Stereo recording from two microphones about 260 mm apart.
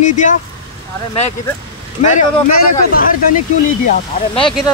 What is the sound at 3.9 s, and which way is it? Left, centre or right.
Speech, left.